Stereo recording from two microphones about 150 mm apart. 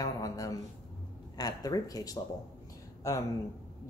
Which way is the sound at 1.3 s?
25° left (ahead or behind).